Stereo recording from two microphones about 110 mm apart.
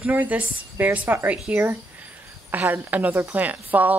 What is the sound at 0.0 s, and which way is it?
Speech, 15° right (ahead or behind).